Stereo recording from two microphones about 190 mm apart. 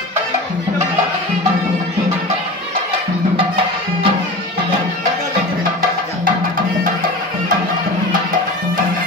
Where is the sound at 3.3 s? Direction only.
30° right (ahead or behind).